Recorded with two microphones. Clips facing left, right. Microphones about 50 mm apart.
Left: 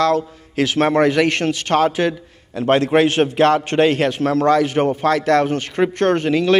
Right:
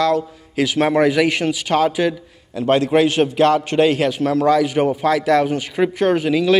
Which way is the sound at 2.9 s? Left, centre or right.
Left.